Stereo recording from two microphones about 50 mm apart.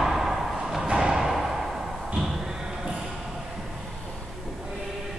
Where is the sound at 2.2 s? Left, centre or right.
Centre.